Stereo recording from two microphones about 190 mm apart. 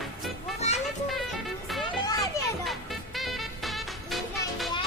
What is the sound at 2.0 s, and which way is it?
Children playing, 20° left (ahead or behind).